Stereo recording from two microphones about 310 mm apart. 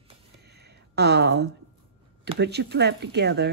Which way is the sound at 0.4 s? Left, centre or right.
Right.